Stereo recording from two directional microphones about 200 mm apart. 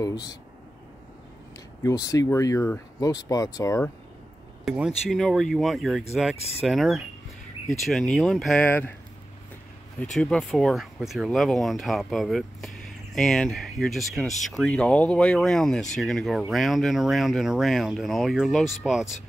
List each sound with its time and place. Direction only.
0.0 s speech: 20° left (ahead or behind)
1.8 s speech: 15° left (ahead or behind)
4.6 s speech: centre (ahead or behind)
6.3 s speech: 30° left (ahead or behind)
6.6 s speech: centre (ahead or behind)
10.1 s speech: 5° left (ahead or behind)